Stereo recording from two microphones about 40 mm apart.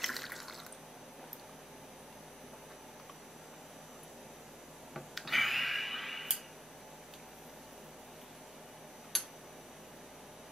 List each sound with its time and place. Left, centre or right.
0.0 s water: centre
4.9 s a sound: centre
9.1 s tick-tock: centre